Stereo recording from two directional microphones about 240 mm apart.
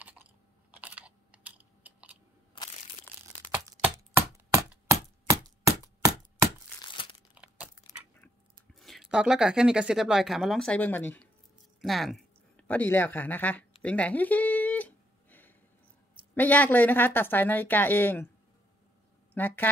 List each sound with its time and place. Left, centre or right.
0.7 s computer keyboard: centre
3.8 s chopping: centre
6.8 s crumpling: centre
7.3 s a sound: centre
8.7 s speech: centre
13.8 s a sound: centre
16.3 s speech: centre
19.3 s speech: centre